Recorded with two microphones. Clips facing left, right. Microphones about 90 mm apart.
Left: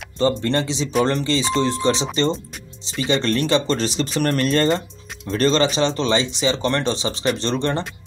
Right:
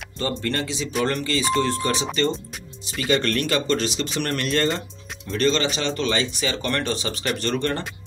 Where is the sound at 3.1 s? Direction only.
25° left (ahead or behind).